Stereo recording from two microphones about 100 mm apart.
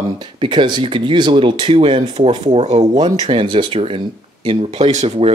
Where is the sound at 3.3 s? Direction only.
60° right (ahead or behind).